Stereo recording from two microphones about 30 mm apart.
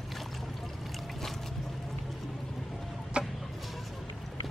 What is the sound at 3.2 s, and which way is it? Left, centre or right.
Chicken, right.